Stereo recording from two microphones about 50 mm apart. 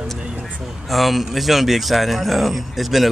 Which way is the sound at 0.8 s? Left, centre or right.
Centre.